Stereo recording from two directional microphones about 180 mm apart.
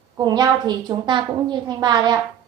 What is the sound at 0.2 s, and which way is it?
A woman's voice, 25° right (ahead or behind).